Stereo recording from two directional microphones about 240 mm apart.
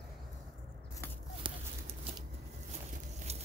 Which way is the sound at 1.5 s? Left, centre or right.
Right.